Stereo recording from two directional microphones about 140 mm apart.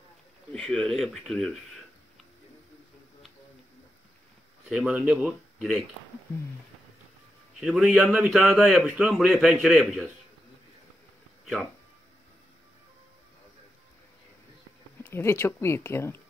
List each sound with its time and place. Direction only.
0.5 s a man's voice: 5° left (ahead or behind)
4.6 s a man's voice: 5° right (ahead or behind)
7.6 s a man's voice: centre (ahead or behind)
15.0 s speech: 15° left (ahead or behind)